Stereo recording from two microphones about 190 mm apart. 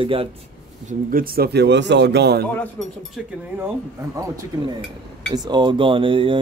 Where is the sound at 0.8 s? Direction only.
50° right (ahead or behind).